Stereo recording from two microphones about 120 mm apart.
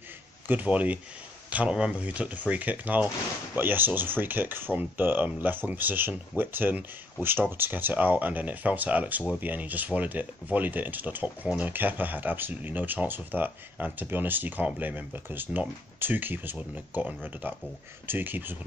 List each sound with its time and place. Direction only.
0.5 s speech: 15° right (ahead or behind)